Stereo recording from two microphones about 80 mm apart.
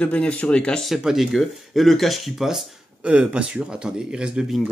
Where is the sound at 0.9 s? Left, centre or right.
Centre.